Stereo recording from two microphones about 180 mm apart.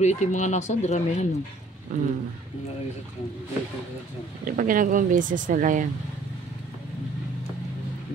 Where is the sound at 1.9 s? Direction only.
40° right (ahead or behind).